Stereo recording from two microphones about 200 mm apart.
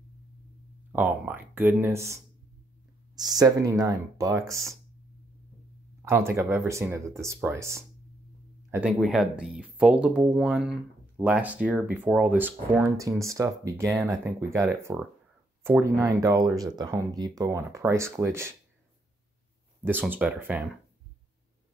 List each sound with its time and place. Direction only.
0.9 s speech: 10° right (ahead or behind)
3.2 s speech: 20° right (ahead or behind)
6.0 s speech: 10° right (ahead or behind)
19.8 s speech: 10° right (ahead or behind)